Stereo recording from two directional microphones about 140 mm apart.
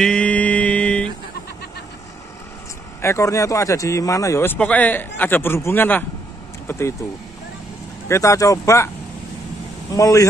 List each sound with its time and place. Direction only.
0.0 s mantra: 10° left (ahead or behind)
3.0 s a man's voice: 20° left (ahead or behind)
8.1 s speech: 20° left (ahead or behind)
9.9 s speech: 25° left (ahead or behind)